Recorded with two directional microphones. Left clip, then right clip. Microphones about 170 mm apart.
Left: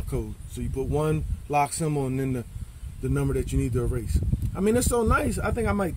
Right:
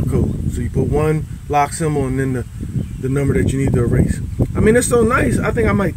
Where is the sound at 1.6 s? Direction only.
20° left (ahead or behind).